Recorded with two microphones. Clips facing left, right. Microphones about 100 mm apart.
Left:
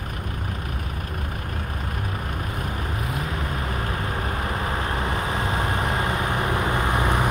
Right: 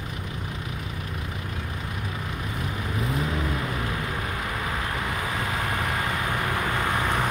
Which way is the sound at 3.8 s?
40° left (ahead or behind).